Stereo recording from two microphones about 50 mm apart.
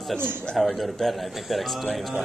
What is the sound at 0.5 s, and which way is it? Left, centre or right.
Speech, centre.